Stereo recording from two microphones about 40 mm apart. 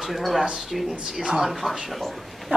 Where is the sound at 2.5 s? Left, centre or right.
Right.